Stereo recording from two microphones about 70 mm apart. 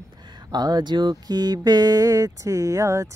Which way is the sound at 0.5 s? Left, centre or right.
Right.